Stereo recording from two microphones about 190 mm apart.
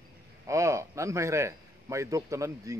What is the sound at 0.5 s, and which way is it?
A man's voice, 15° right (ahead or behind).